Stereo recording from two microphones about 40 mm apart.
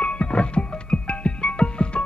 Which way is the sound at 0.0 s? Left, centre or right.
Left.